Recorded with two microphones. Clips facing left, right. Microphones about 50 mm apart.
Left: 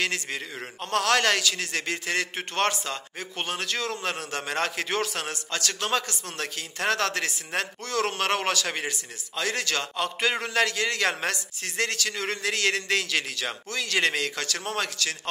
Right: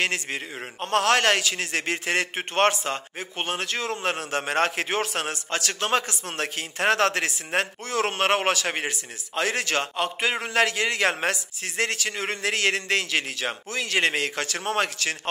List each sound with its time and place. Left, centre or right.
0.0 s a man's voice: right
3.9 s a man's voice: right